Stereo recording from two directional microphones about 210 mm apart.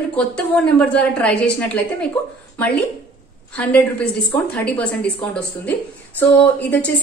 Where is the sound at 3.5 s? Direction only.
5° left (ahead or behind).